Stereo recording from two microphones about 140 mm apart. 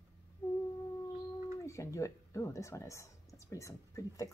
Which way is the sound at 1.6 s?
20° left (ahead or behind).